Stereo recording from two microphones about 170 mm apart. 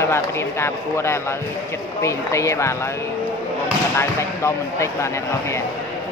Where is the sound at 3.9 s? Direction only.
15° left (ahead or behind).